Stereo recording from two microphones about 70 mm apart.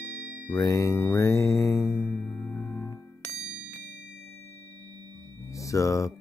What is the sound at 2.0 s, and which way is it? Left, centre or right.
Music, left.